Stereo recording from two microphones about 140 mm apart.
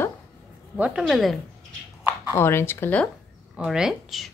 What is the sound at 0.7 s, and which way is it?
Speech, 10° right (ahead or behind).